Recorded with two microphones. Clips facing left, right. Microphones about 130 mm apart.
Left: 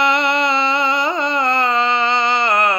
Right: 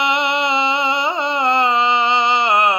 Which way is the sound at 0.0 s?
20° right (ahead or behind).